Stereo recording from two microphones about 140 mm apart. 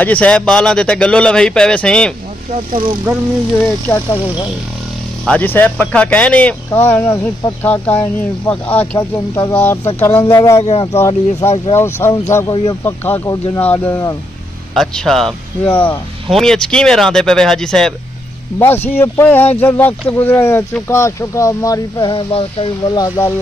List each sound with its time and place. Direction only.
0.0 s speech: 10° left (ahead or behind)
5.2 s speech: 10° left (ahead or behind)
10.6 s speech: 45° left (ahead or behind)
10.9 s speech: 25° left (ahead or behind)
14.7 s speech: centre (ahead or behind)
15.6 s speech: 15° left (ahead or behind)
16.3 s speech: 5° left (ahead or behind)
18.6 s speech: 15° left (ahead or behind)
22.1 s speech: 40° left (ahead or behind)
22.8 s speech: 25° left (ahead or behind)